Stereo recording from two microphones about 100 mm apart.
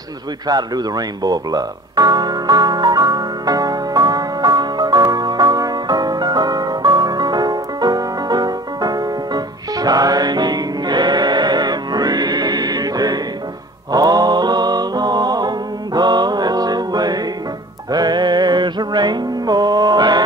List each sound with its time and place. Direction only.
0.5 s music: 40° right (ahead or behind)